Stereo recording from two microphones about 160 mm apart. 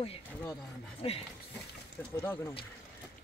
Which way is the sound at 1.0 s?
35° left (ahead or behind).